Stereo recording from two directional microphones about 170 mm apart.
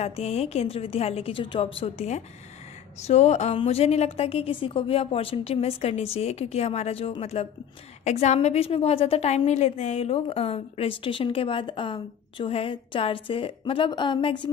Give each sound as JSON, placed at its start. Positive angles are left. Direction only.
{"t": 0.0, "sound": "a woman's voice", "side_deg": 40}